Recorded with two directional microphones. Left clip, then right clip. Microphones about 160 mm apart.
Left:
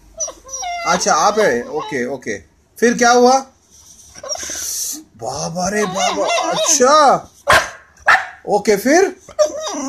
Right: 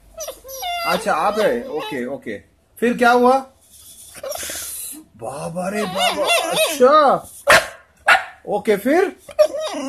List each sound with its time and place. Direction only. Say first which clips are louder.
0.2 s dog: left 3 dB; 15° right (ahead or behind)
1.0 s speech: left 6 dB; 10° left (ahead or behind)
1.7 s speech: left 2 dB; 10° right (ahead or behind)
2.0 s speech: left 5 dB; 10° left (ahead or behind)
4.1 s a sound: left 2 dB; 15° right (ahead or behind)
5.2 s speech: left 4 dB; 10° left (ahead or behind)
5.8 s speech: left 1 dB; 15° right (ahead or behind)
6.8 s speech: left 2 dB; 15° left (ahead or behind)
8.0 s dog: left 2 dB; 15° left (ahead or behind)
9.2 s dog: even; 5° right (ahead or behind)